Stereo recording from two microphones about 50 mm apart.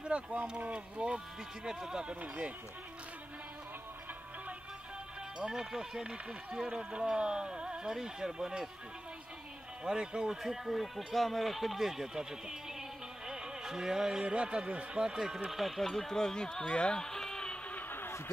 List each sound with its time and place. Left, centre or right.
0.0 s speech: right
5.5 s speech: centre
9.8 s speech: centre
13.3 s music: centre
14.2 s speech: right; by 17.6 s centre
17.6 s a sound: left